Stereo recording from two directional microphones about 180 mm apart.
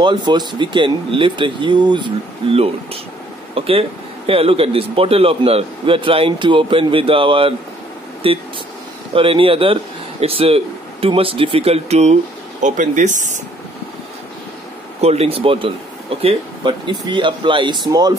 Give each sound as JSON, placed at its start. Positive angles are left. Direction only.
{"t": 0.0, "sound": "speech", "side_deg": -25}
{"t": 15.0, "sound": "speech", "side_deg": -35}